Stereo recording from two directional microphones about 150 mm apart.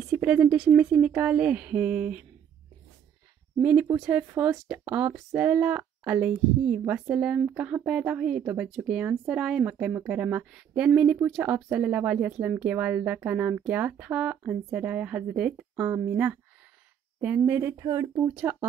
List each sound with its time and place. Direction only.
0.0 s a woman's voice: 5° right (ahead or behind)
3.6 s a woman's voice: 10° right (ahead or behind)
18.3 s a woman's voice: 10° right (ahead or behind)